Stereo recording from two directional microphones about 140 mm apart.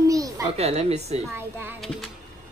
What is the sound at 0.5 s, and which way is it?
Speech, 50° right (ahead or behind).